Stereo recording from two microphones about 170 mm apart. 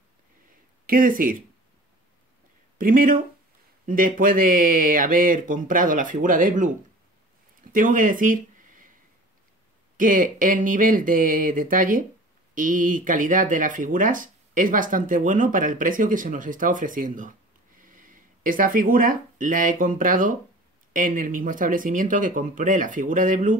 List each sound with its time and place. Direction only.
0.8 s speech: 55° right (ahead or behind)
2.8 s speech: 55° right (ahead or behind)
7.7 s speech: 50° right (ahead or behind)
9.9 s speech: 50° right (ahead or behind)